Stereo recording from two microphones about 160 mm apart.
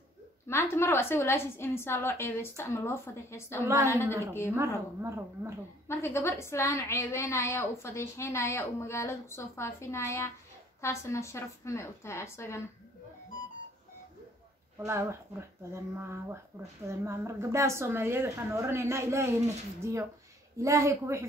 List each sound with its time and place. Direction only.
0.5 s a woman's voice: 15° left (ahead or behind)
3.6 s a woman's voice: 20° right (ahead or behind)
5.9 s a woman's voice: 15° left (ahead or behind)
14.9 s a woman's voice: 15° right (ahead or behind)